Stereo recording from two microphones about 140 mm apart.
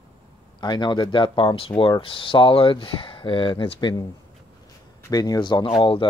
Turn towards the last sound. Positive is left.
turn(degrees=40)  # may be behind; listen again after turning